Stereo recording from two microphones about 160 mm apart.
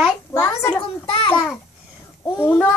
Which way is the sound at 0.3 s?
15° left (ahead or behind).